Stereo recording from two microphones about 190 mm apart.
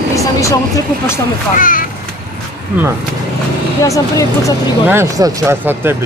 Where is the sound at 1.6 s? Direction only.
45° left (ahead or behind).